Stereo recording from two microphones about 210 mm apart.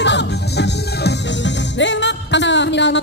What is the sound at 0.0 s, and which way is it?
Music, 55° left (ahead or behind).